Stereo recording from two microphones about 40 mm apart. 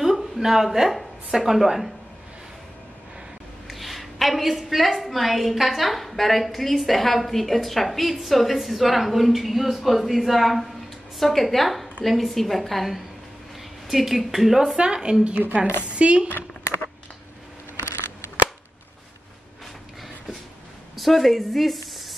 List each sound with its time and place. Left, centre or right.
0.0 s a woman's voice: centre
3.6 s a woman's voice: centre
16.0 s speech: right
16.3 s a sound: left
20.9 s speech: centre